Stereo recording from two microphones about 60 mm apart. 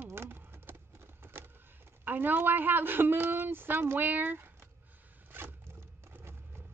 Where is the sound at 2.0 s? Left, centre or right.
Right.